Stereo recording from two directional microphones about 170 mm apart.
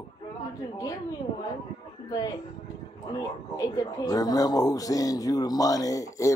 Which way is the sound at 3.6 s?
20° left (ahead or behind).